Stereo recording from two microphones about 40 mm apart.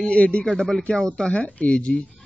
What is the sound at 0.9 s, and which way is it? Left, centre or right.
Speech, left.